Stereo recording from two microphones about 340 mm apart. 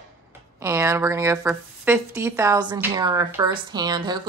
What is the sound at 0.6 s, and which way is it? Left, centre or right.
Speech, centre.